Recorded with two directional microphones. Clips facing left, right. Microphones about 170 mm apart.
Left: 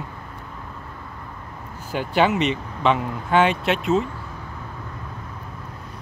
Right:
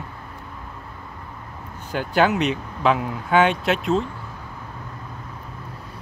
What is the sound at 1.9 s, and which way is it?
Speech, centre (ahead or behind).